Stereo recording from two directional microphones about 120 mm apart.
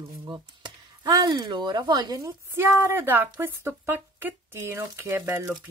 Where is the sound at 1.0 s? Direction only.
35° right (ahead or behind).